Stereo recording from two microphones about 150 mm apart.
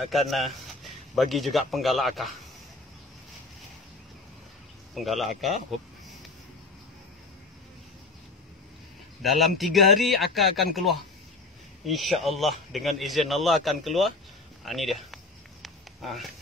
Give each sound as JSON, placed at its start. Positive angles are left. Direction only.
{"t": 0.3, "sound": "speech", "side_deg": 0}
{"t": 4.9, "sound": "speech", "side_deg": 0}
{"t": 9.2, "sound": "speech", "side_deg": 0}
{"t": 15.6, "sound": "a sound", "side_deg": 0}